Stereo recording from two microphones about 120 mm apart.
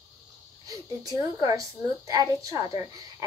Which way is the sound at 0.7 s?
25° right (ahead or behind).